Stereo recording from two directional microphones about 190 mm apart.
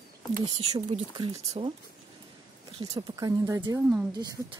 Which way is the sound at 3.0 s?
20° right (ahead or behind).